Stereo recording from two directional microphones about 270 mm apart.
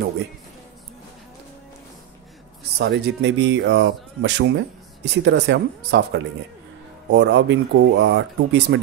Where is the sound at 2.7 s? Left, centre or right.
Right.